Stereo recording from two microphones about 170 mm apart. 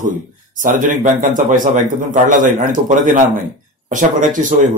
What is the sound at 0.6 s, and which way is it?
A man's voice, 50° right (ahead or behind).